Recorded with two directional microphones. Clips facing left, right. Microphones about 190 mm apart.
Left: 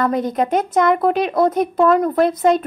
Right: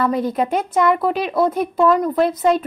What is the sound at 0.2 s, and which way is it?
A woman's voice, 45° left (ahead or behind).